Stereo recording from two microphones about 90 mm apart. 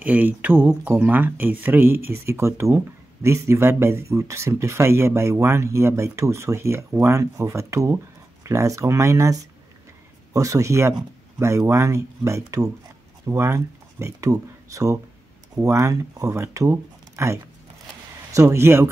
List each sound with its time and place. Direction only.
0.0 s speech: 20° right (ahead or behind)